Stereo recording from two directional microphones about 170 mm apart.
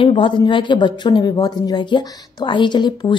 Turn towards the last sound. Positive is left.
turn(degrees=25)  # may be behind; listen again after turning